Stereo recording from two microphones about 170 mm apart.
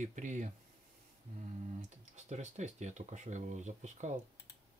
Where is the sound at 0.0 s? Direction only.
45° right (ahead or behind).